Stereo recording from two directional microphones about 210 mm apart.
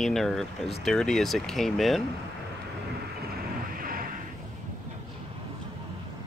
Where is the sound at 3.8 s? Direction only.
45° right (ahead or behind).